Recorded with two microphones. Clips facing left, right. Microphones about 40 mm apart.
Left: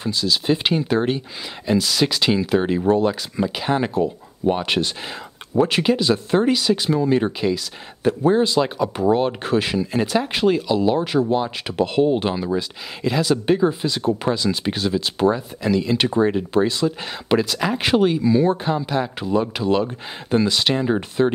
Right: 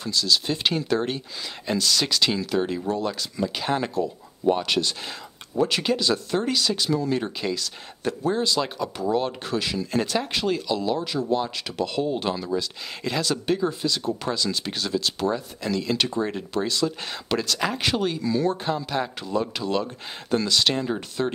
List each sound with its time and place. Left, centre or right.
0.0 s speech: centre
3.9 s speech: left
7.4 s speech: centre
8.1 s speech: left
8.9 s speech: left
9.9 s speech: centre
11.0 s speech: left
11.3 s speech: centre
11.7 s speech: left
13.0 s speech: centre
13.5 s speech: left
16.0 s speech: left